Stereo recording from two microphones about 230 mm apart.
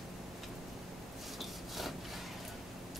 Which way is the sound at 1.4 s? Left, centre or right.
Centre.